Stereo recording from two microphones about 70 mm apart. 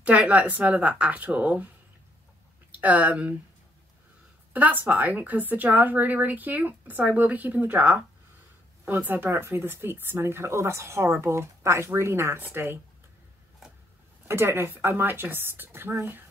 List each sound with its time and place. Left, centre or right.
0.0 s a woman's voice: centre
2.7 s speech: right
4.6 s a woman's voice: right
14.2 s speech: right